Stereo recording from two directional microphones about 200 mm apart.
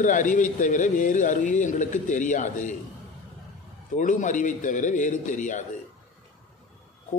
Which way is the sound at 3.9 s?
40° left (ahead or behind).